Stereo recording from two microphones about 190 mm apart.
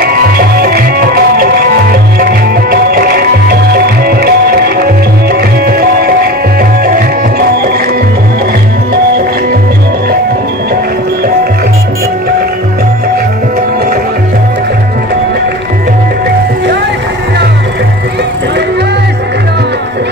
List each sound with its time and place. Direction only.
0.0 s music: 50° right (ahead or behind)